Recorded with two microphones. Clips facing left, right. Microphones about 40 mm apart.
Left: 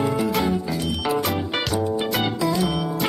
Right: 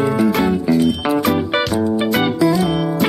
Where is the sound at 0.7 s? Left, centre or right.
Right.